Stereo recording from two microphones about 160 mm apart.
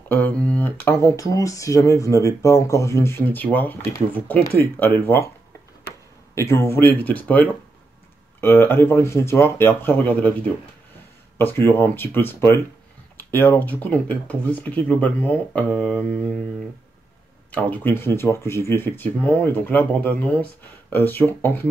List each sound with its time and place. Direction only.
0.1 s speech: 10° left (ahead or behind)
6.3 s speech: 20° left (ahead or behind)
11.3 s speech: 15° left (ahead or behind)
17.5 s speech: 10° left (ahead or behind)